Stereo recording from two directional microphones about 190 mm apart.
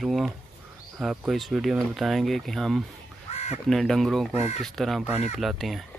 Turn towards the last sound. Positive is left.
turn(degrees=0)  # may be behind; listen again after turning